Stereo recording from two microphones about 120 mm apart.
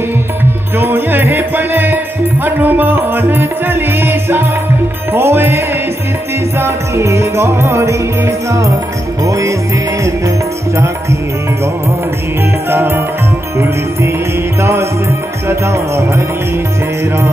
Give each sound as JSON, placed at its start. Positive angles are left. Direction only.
{"t": 0.7, "sound": "music", "side_deg": -15}
{"t": 6.6, "sound": "music", "side_deg": -25}
{"t": 12.6, "sound": "music", "side_deg": -20}
{"t": 14.6, "sound": "music", "side_deg": -25}